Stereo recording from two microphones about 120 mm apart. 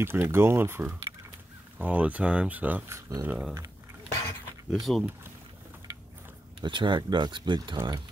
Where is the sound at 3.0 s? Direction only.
25° right (ahead or behind).